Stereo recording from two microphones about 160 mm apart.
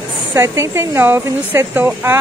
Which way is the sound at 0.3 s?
15° right (ahead or behind).